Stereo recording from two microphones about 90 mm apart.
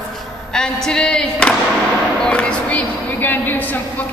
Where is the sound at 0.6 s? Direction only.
10° left (ahead or behind).